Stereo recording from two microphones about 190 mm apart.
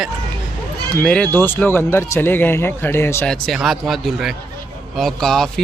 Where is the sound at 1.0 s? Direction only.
5° left (ahead or behind).